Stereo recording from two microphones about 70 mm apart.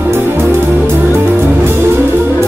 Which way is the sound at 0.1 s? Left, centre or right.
Right.